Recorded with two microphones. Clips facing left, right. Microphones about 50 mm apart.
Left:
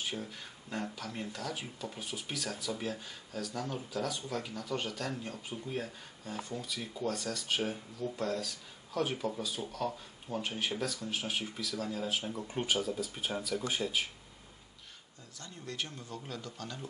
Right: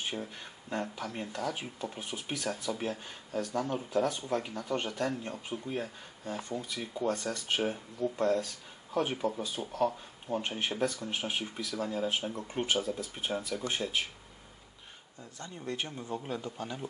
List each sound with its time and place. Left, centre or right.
0.0 s speech: centre
5.7 s speech: centre
15.3 s speech: right